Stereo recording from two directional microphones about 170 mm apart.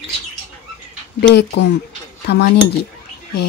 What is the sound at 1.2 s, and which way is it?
Speech, 90° left.